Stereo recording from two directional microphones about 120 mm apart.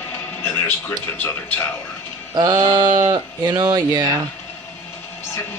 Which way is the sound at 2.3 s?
35° right (ahead or behind).